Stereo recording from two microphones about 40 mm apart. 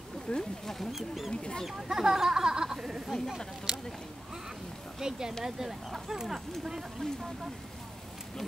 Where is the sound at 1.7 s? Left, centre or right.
Centre.